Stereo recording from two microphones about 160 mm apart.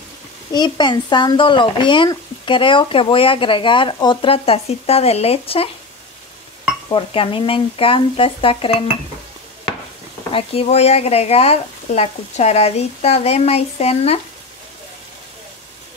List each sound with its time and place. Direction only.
0.5 s speech: 25° left (ahead or behind)
6.9 s speech: 30° left (ahead or behind)
10.3 s speech: 35° left (ahead or behind)